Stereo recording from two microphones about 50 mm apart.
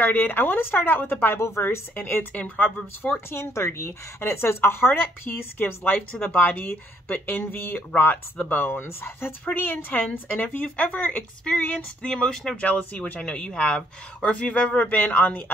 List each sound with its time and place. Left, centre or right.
0.0 s speech: left
1.2 s speech: left
1.6 s speech: left
2.3 s speech: left
3.3 s speech: left
4.2 s speech: left
6.1 s speech: left
9.4 s speech: left
10.4 s speech: left
11.7 s speech: centre
12.5 s speech: left
13.2 s speech: centre; by 15.5 s left